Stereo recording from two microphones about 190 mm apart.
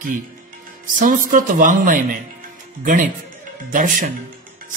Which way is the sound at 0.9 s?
45° right (ahead or behind).